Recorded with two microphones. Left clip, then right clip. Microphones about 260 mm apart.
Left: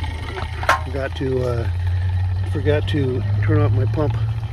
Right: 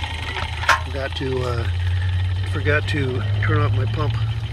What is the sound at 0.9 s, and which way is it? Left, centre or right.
Speech, centre.